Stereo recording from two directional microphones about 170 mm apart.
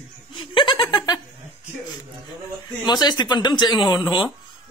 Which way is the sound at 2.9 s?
25° left (ahead or behind).